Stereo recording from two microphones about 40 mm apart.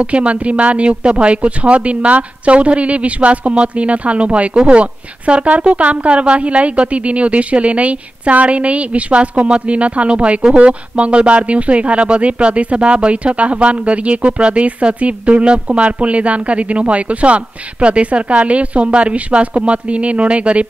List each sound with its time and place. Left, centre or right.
0.0 s speech: right